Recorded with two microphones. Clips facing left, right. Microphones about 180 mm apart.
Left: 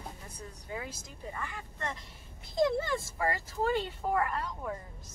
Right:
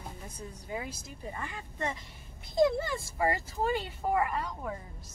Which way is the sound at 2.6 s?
5° right (ahead or behind).